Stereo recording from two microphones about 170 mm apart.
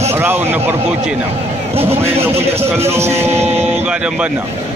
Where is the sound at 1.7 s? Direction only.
15° right (ahead or behind).